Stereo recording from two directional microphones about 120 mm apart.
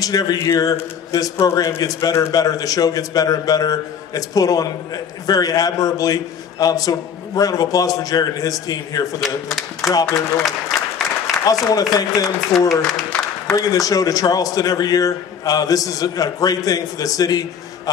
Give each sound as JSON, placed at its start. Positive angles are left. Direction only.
{"t": 0.0, "sound": "a man's voice", "side_deg": 30}
{"t": 9.2, "sound": "speech", "side_deg": 0}
{"t": 9.8, "sound": "speech", "side_deg": 30}
{"t": 10.4, "sound": "applause", "side_deg": 0}
{"t": 11.6, "sound": "a man's voice", "side_deg": 30}
{"t": 13.6, "sound": "a man's voice", "side_deg": 30}